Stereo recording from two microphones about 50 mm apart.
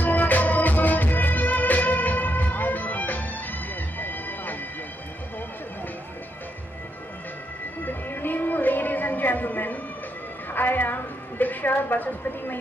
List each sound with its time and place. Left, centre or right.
0.0 s music: left
7.8 s music: left
10.5 s a sound: left